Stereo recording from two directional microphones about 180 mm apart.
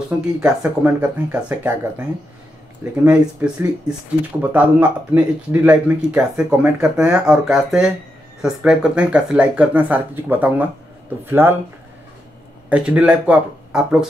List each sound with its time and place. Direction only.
0.4 s speech: 5° right (ahead or behind)
12.6 s speech: 5° right (ahead or behind)